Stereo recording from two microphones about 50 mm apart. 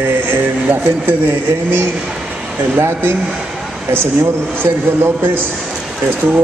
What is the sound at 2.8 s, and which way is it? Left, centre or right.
A woman's voice, right.